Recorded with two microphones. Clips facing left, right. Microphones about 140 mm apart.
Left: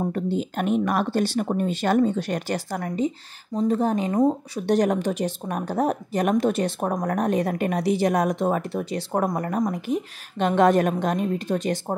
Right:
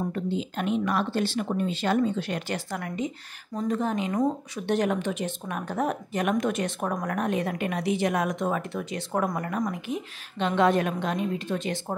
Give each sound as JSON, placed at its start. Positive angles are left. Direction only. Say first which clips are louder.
{"t": 0.0, "sound": "a woman's voice", "louder": "left 4 dB", "side_deg": 45}